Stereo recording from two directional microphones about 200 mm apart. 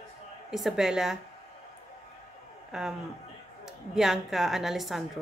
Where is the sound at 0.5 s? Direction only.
Centre (ahead or behind).